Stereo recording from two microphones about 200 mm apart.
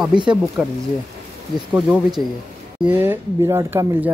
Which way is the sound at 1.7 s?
5° right (ahead or behind).